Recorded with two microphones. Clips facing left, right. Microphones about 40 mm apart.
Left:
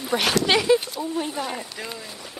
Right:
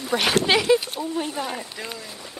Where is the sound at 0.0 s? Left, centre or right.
Centre.